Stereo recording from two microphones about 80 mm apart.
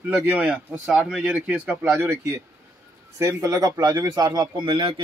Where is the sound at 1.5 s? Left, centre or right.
Right.